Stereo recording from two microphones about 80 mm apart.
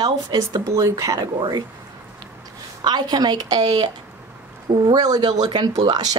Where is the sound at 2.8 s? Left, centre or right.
Right.